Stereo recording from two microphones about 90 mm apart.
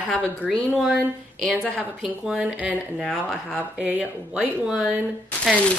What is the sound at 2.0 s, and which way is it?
Speech, 5° right (ahead or behind).